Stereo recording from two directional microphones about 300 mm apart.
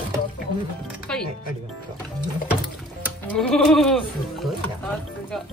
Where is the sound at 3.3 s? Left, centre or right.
Centre.